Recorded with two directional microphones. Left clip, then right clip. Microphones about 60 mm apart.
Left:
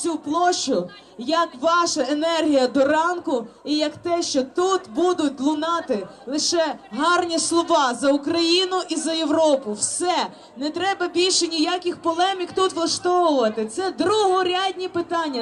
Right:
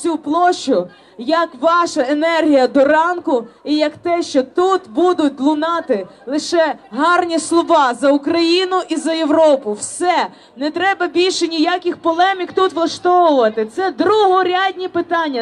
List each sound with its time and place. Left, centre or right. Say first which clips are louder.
0.0 s a man's voice: right 6 dB; right